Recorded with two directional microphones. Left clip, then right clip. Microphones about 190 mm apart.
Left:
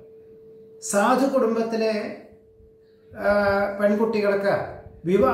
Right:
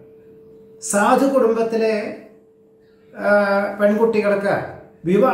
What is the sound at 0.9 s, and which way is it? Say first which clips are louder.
A woman's voice: right 4 dB; 5° left (ahead or behind).